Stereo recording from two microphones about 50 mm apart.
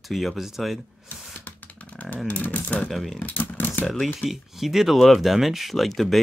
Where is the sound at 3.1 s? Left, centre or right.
Left.